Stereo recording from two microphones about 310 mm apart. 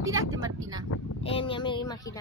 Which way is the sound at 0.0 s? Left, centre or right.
Centre.